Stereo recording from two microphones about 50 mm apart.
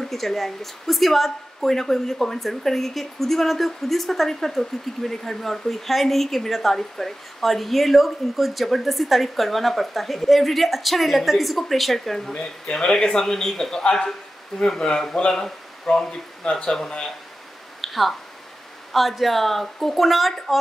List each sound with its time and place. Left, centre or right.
0.0 s a woman's voice: centre
12.7 s speech: centre
17.8 s a sound: centre
18.9 s a woman's voice: centre